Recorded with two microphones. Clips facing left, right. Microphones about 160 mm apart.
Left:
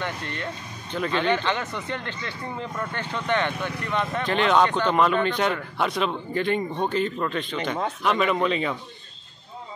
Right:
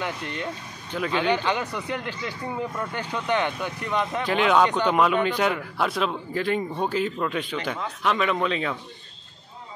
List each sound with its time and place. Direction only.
0.0 s a man's voice: 10° right (ahead or behind)